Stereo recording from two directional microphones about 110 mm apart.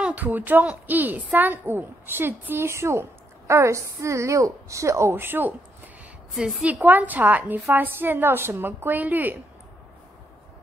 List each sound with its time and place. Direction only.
0.0 s a woman's voice: 15° right (ahead or behind)
6.3 s a woman's voice: 5° right (ahead or behind)